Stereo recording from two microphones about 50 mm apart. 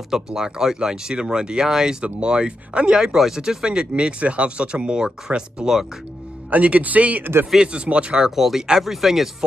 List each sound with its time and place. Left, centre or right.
0.1 s speech: centre
6.5 s a man's voice: right
7.5 s speech: right
8.4 s speech: centre